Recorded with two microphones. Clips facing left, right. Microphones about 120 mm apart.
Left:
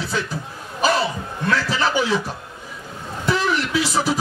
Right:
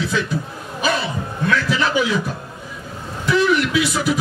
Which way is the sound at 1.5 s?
35° left (ahead or behind).